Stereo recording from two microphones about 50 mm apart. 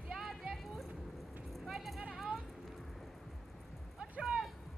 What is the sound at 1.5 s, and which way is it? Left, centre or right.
Clip-clop, centre.